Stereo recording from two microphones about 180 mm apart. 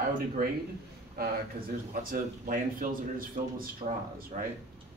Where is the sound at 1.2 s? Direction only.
60° right (ahead or behind).